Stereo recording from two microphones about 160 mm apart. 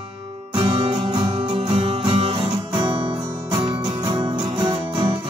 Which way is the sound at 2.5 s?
25° right (ahead or behind).